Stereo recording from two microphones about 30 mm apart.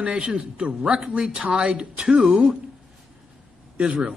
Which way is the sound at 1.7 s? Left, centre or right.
Right.